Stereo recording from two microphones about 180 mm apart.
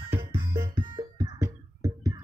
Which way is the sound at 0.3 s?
30° right (ahead or behind).